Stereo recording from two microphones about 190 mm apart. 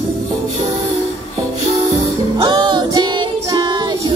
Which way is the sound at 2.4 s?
25° right (ahead or behind).